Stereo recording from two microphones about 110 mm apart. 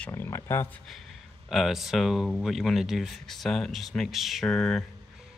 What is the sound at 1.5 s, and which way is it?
Speech, centre (ahead or behind).